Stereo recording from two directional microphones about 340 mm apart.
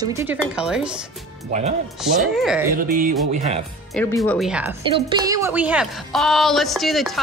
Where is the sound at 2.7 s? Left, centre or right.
Right.